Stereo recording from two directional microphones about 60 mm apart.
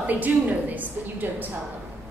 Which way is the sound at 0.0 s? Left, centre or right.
Right.